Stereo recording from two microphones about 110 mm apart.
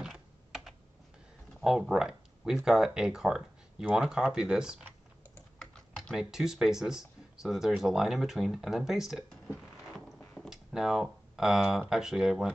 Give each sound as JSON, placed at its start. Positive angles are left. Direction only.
{"t": 0.0, "sound": "typing", "side_deg": 0}
{"t": 1.6, "sound": "speech", "side_deg": -5}
{"t": 5.6, "sound": "typing", "side_deg": 5}
{"t": 6.1, "sound": "speech", "side_deg": -5}
{"t": 10.5, "sound": "speech", "side_deg": -5}